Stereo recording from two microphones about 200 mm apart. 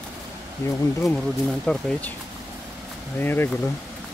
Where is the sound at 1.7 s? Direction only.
5° left (ahead or behind).